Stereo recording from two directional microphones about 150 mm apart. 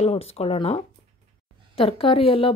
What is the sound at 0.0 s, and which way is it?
A woman's voice, 45° left (ahead or behind).